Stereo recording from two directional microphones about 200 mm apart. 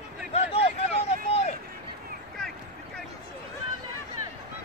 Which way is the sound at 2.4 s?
5° left (ahead or behind).